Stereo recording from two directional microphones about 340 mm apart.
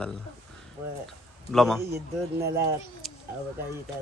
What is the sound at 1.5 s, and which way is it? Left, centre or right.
Speech, centre.